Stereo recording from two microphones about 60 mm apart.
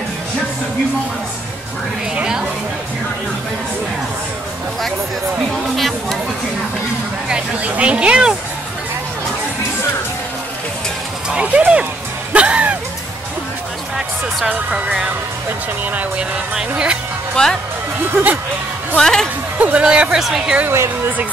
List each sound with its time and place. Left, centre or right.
2.1 s speech: centre
5.8 s chatter: centre
7.2 s speech: centre
11.2 s a sound: centre
12.3 s music: right
14.7 s speech: centre
15.8 s speech: right
16.5 s speech: centre
17.4 s speech: centre
18.1 s speech: right
18.9 s speech: centre
19.6 s speech: right
20.2 s a woman's voice: centre
20.6 s a woman's voice: right